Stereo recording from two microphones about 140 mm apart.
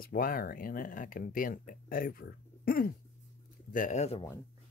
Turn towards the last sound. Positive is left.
turn(degrees=50)  # may be behind; listen again after turning